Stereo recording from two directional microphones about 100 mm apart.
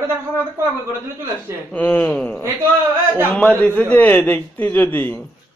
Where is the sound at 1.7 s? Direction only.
20° left (ahead or behind).